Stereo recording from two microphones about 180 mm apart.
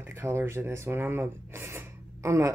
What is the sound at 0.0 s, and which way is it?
Speech, 15° right (ahead or behind).